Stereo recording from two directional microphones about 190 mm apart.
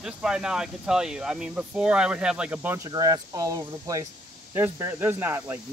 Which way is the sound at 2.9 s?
20° right (ahead or behind).